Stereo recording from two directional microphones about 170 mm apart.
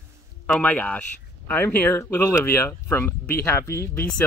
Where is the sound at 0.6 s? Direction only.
10° left (ahead or behind).